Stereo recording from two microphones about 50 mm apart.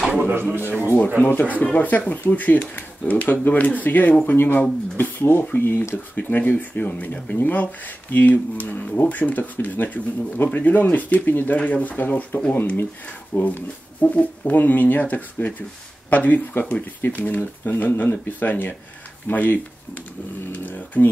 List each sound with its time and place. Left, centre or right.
0.2 s speech: right
1.2 s speech: left
11.5 s speech: left